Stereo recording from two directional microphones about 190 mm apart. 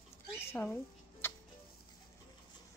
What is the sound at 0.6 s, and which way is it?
Speech, 10° left (ahead or behind).